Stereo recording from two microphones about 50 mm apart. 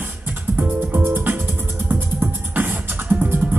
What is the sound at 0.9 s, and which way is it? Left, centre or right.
Music, right.